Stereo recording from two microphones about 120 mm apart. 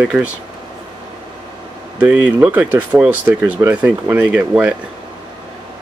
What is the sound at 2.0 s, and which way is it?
Speech, 15° right (ahead or behind).